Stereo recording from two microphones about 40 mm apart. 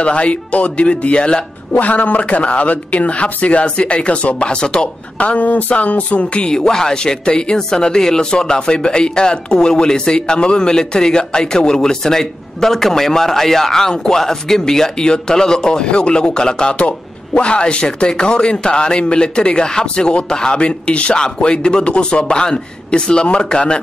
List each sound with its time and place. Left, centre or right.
0.0 s a man's voice: left
1.7 s a man's voice: left
5.2 s speech: left
6.5 s a man's voice: centre